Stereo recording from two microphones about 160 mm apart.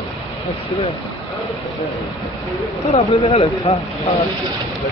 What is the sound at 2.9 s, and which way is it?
Speech, 40° left (ahead or behind).